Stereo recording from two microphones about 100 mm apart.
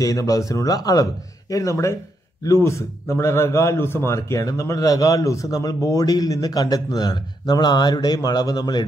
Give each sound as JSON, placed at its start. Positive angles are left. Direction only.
{"t": 0.0, "sound": "speech", "side_deg": 35}